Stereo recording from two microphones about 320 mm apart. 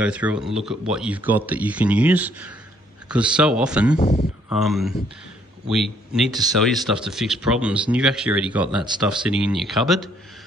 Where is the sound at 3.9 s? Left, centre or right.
Centre.